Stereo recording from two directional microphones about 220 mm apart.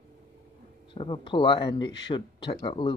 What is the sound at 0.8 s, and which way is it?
Speech, 20° left (ahead or behind).